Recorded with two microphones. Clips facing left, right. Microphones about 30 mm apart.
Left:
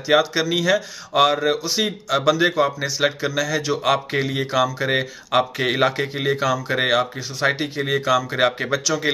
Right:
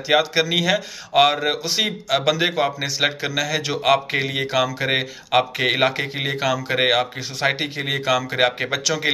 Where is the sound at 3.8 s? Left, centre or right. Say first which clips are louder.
Right 2 dB; right.